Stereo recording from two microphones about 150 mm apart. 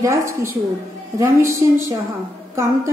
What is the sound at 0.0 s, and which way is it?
A woman's voice, 20° right (ahead or behind).